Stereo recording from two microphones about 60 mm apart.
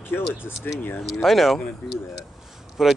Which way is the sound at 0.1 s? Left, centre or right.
Left.